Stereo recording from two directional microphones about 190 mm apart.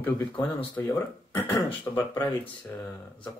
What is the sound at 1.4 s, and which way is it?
Speech, 25° left (ahead or behind).